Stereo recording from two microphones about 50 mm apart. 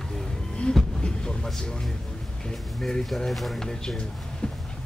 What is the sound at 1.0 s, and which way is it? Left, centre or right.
Speech, centre.